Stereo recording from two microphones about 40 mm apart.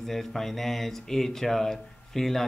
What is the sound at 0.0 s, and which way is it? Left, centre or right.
A man's voice, centre.